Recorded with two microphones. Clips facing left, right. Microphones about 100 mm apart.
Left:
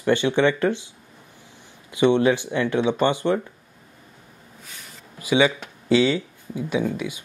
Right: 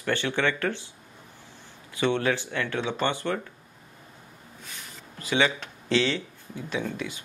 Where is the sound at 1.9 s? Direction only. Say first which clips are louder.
Left 7 dB; 20° left (ahead or behind).